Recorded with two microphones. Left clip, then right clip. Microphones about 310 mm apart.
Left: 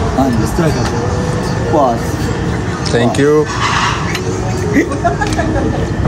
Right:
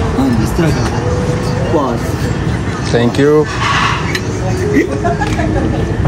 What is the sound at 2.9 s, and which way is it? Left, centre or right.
Speech, centre.